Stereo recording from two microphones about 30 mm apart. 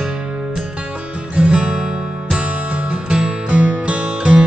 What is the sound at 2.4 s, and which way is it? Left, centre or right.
Music, right.